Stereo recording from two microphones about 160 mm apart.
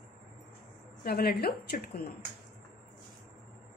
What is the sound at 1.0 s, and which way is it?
A woman's voice, 75° left (ahead or behind).